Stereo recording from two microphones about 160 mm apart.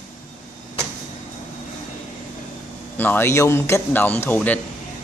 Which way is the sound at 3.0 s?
15° left (ahead or behind).